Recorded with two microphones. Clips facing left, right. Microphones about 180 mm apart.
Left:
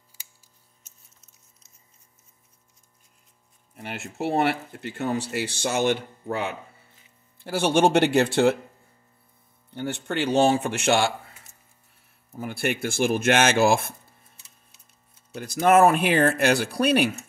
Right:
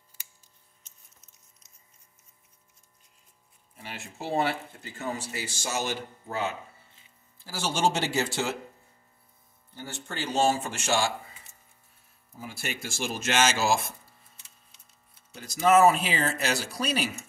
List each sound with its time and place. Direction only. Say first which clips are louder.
3.7 s speech: left 7 dB; 65° left (ahead or behind)
9.7 s speech: left 10 dB; 60° left (ahead or behind)
12.3 s speech: left 10 dB; 60° left (ahead or behind)
15.3 s speech: left 3 dB; 60° left (ahead or behind)